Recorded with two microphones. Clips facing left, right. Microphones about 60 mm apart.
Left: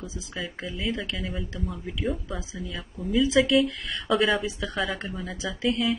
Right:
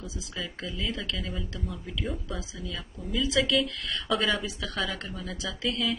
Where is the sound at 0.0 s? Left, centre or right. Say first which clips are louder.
Left 2 dB; left.